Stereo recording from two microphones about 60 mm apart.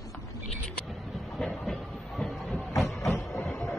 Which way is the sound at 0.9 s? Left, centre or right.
Centre.